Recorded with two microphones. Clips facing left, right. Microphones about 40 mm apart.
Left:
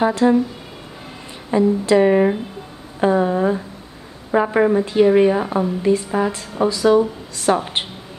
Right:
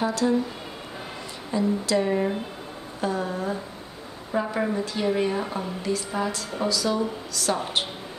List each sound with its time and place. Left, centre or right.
0.0 s a woman's voice: left
1.5 s a woman's voice: left
3.0 s a woman's voice: left